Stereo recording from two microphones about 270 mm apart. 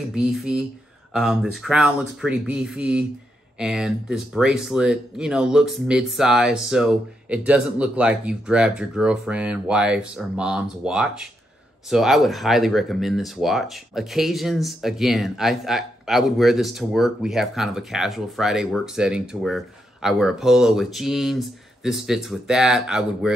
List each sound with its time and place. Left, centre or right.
0.1 s speech: centre